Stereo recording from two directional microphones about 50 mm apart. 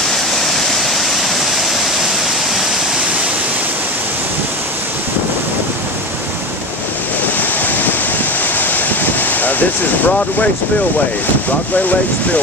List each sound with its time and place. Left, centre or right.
0.1 s waterfall: centre
7.3 s waves: left
8.5 s a sound: left